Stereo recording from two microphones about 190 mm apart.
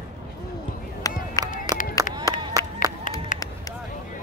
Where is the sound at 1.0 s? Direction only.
20° left (ahead or behind).